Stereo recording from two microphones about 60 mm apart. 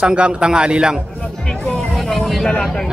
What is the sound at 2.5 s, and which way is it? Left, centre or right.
Speech, centre.